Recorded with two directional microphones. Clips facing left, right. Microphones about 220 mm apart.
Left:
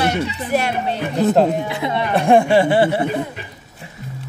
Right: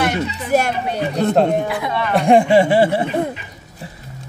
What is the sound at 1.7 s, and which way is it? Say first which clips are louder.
Speech: even; 25° left (ahead or behind).